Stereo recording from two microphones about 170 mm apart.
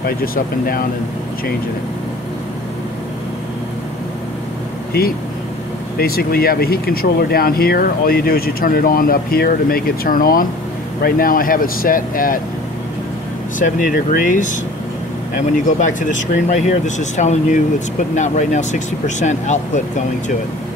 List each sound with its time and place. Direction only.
0.0 s speech: 60° left (ahead or behind)
5.9 s speech: 60° left (ahead or behind)
14.1 s speech: 50° left (ahead or behind)
15.5 s speech: 50° left (ahead or behind)